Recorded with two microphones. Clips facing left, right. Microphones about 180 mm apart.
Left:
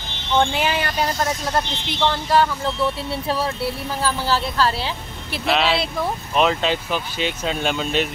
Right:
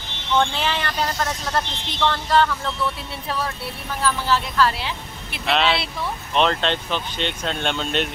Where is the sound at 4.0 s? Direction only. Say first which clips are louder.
Right 1 dB; 30° left (ahead or behind).